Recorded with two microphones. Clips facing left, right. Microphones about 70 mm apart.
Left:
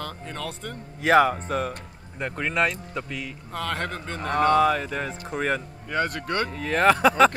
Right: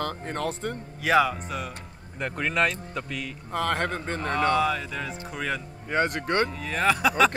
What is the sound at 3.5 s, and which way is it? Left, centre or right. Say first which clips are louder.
Speech: right 3 dB; right.